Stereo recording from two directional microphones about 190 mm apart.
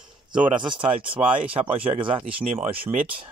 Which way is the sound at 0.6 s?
25° right (ahead or behind).